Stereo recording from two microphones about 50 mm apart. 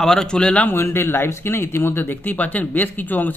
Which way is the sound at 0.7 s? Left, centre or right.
Left.